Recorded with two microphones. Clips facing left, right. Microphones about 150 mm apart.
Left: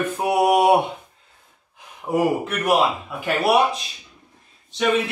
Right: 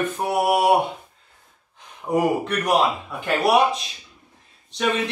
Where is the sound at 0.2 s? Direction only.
15° left (ahead or behind).